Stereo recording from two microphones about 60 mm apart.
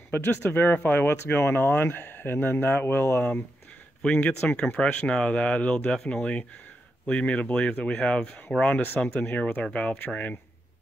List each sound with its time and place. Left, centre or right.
0.1 s speech: left
4.1 s speech: left
7.1 s speech: left